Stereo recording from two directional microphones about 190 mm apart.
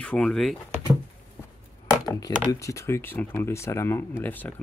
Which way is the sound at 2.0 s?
20° left (ahead or behind).